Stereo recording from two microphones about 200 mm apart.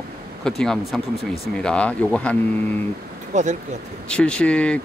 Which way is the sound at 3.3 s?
35° right (ahead or behind).